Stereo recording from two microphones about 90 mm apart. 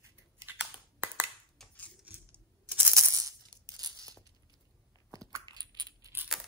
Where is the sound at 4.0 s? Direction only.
40° right (ahead or behind).